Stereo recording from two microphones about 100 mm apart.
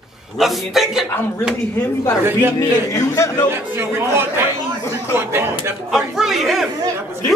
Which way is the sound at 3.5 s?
25° right (ahead or behind).